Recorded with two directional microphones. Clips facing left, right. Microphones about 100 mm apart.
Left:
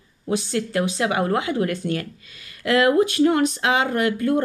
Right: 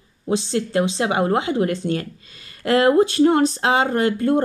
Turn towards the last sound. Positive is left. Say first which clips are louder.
# right 2 dB
turn(degrees=-30)  # may be behind; listen again after turning